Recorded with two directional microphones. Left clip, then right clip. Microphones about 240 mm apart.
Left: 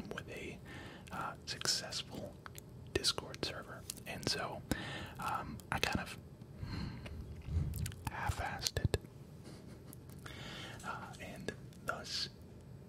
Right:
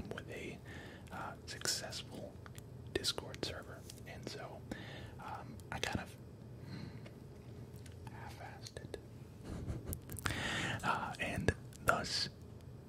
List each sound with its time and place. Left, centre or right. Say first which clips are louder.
0.0 s whispering: left 1 dB; centre
3.8 s whispering: left 8 dB; centre
6.7 s sniff: left 5 dB; centre
7.8 s whispering: left 13 dB; left
9.8 s whispering: right 13 dB; right